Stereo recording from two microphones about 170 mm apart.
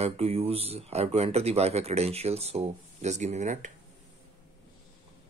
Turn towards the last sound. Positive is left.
turn(degrees=-45)  # may be behind; listen again after turning